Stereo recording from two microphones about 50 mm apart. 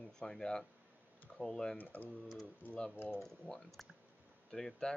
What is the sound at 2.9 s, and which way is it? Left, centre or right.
Speech, left.